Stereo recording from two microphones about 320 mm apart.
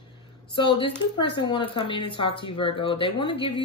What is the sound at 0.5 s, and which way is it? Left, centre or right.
A woman's voice, centre.